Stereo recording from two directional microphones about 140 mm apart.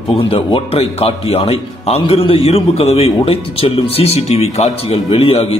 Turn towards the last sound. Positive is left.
turn(degrees=40)  # may be behind; listen again after turning